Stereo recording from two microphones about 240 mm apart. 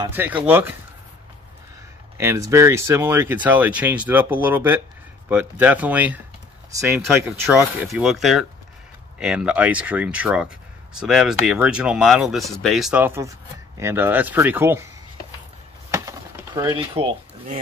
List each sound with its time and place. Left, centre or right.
0.0 s speech: centre
2.1 s speech: centre
15.9 s a sound: centre